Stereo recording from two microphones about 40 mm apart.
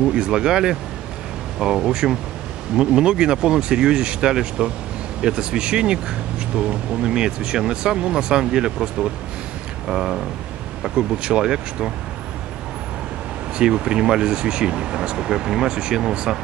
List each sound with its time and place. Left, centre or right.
0.1 s speech: right
9.8 s speech: centre
11.0 s speech: right
13.6 s speech: right